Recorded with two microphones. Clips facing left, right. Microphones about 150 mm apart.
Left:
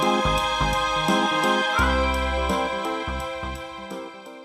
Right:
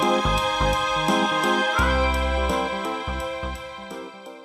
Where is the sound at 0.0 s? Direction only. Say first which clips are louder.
Right 1 dB; centre (ahead or behind).